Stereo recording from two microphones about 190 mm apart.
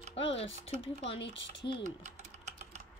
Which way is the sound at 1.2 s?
70° left (ahead or behind).